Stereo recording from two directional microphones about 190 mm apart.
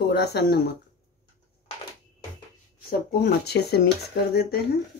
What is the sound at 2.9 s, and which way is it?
Speech, 55° left (ahead or behind).